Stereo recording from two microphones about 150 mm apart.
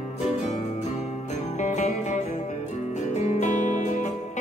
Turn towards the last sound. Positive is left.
turn(degrees=50)  # may be behind; listen again after turning